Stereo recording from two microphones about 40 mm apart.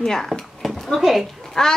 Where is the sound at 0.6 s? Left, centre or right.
Centre.